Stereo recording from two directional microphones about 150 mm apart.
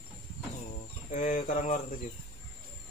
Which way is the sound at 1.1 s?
60° left (ahead or behind).